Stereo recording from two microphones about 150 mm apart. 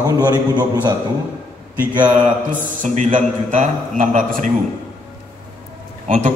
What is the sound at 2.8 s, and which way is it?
A man's voice, 55° right (ahead or behind).